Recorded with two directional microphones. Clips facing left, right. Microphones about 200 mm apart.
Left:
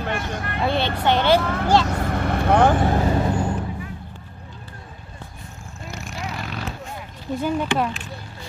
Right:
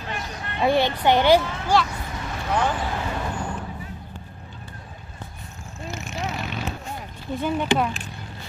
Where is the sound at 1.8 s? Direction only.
65° left (ahead or behind); by 3.4 s 40° left (ahead or behind).